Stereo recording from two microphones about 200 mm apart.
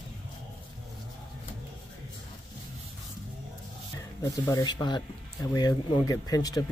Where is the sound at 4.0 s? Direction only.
15° left (ahead or behind).